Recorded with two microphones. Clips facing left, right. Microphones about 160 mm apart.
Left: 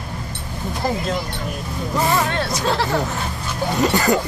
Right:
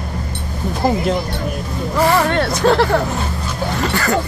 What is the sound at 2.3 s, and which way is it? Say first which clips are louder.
Speech: right 7 dB; 65° right (ahead or behind).